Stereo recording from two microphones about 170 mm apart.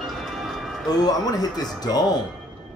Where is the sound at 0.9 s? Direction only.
20° left (ahead or behind).